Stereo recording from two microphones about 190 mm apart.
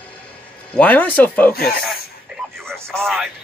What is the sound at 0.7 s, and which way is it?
Speech, 10° left (ahead or behind).